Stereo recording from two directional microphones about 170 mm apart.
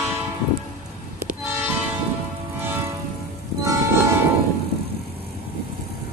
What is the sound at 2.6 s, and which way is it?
Train, 10° right (ahead or behind).